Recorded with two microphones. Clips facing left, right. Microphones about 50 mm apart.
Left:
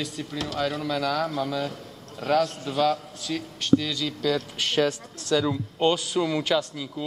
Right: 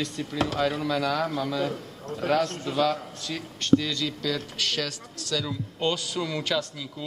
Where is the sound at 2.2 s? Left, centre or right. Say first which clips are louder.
Left 1 dB; right.